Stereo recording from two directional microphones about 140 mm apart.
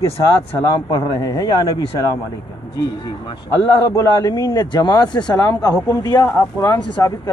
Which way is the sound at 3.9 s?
25° left (ahead or behind).